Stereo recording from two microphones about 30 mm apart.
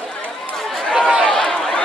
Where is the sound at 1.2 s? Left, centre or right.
Centre.